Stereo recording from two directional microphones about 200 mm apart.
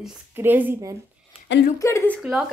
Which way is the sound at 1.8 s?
15° left (ahead or behind).